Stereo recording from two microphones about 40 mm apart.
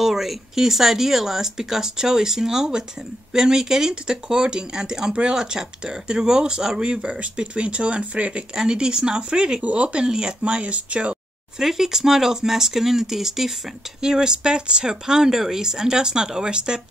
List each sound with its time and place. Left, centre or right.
0.0 s speech: centre; by 8.5 s right
8.5 s speech: centre
9.6 s speech: right
10.0 s speech: centre
11.5 s speech: centre